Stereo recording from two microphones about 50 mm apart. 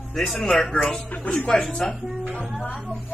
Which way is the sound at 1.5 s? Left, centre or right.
Centre.